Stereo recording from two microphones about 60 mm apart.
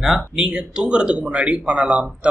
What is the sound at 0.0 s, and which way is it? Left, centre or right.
A man's voice, centre.